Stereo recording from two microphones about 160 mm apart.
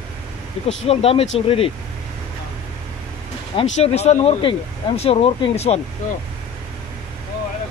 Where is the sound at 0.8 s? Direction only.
35° left (ahead or behind).